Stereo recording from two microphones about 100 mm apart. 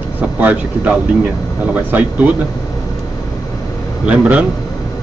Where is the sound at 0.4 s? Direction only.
15° right (ahead or behind).